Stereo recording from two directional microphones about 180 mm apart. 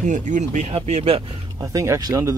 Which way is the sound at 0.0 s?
45° right (ahead or behind).